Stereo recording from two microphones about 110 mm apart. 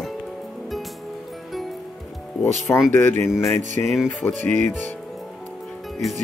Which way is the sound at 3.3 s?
5° left (ahead or behind).